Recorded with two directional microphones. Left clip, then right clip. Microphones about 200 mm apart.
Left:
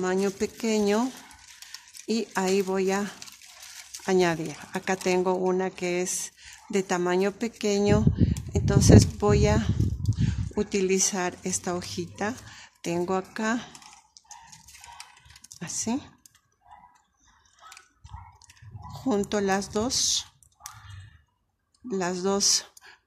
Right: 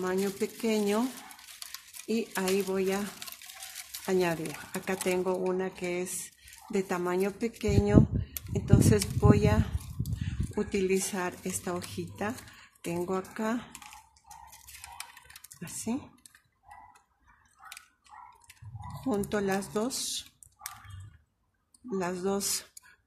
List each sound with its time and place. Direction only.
0.0 s speech: 40° left (ahead or behind)
2.0 s speech: 40° left (ahead or behind)
19.0 s speech: 35° left (ahead or behind)
21.9 s speech: 30° left (ahead or behind)